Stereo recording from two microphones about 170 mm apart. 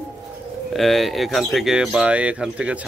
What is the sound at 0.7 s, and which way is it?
Speech, centre (ahead or behind).